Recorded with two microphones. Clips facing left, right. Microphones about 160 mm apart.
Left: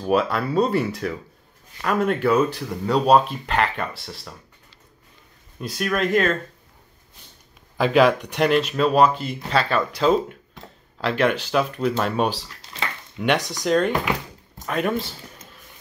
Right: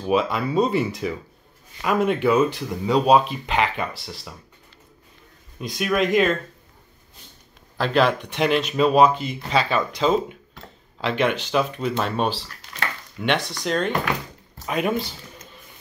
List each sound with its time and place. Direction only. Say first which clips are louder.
0.0 s speech: left 1 dB; centre (ahead or behind)
5.6 s speech: right 1 dB; centre (ahead or behind)
7.7 s speech: left 3 dB; 5° left (ahead or behind)
12.6 s a sound: even; 30° left (ahead or behind)
13.2 s speech: left 2 dB; 5° left (ahead or behind)